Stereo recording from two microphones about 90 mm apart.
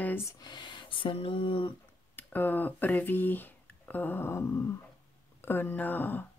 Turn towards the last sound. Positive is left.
turn(degrees=20)  # may be behind; listen again after turning